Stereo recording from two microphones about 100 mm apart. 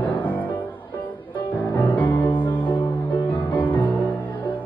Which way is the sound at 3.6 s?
15° left (ahead or behind).